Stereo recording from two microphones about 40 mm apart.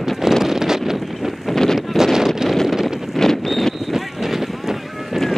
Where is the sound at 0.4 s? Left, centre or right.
Centre.